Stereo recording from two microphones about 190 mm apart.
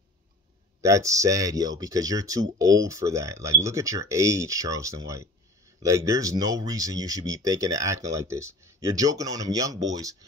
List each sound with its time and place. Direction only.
0.7 s speech: 15° right (ahead or behind)